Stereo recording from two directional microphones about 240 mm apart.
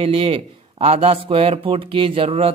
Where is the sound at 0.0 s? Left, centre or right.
Right.